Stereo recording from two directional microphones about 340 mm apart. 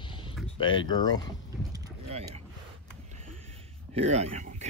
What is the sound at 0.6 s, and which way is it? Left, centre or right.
Speech, centre.